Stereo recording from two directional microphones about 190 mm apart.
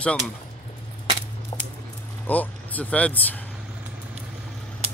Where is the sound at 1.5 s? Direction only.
25° left (ahead or behind).